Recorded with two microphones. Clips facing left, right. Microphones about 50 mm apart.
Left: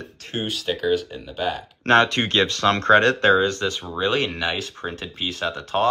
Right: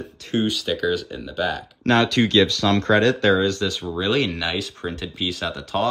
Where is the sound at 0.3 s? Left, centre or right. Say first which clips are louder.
Right 4 dB; centre.